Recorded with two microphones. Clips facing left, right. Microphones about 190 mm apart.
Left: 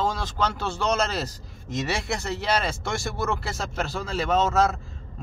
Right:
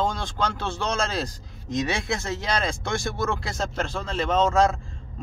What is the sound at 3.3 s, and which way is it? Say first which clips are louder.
Speech: right 1 dB; 5° left (ahead or behind).